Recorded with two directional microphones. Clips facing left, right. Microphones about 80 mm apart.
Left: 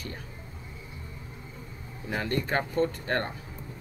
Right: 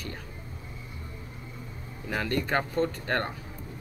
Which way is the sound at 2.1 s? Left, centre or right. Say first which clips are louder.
Right 1 dB; left.